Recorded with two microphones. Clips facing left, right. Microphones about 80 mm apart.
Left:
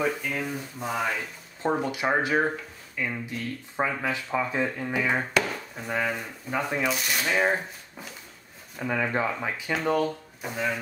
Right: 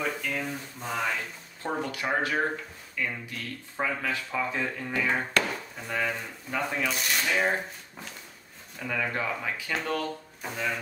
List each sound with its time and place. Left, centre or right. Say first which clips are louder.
0.0 s speech: left 3 dB; centre
1.6 s speech: left 5 dB; centre
8.7 s speech: left 4 dB; left
10.4 s speech: left 3 dB; centre